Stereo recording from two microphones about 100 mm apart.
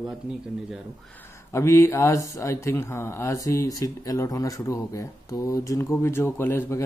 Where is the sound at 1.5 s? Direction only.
30° left (ahead or behind).